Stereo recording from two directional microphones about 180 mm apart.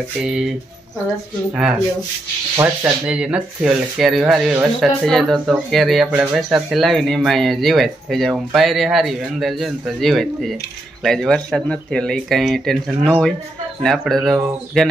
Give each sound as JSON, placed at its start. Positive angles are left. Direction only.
{"t": 0.2, "sound": "speech", "side_deg": -5}
{"t": 1.5, "sound": "speech", "side_deg": -5}
{"t": 2.5, "sound": "speech", "side_deg": -15}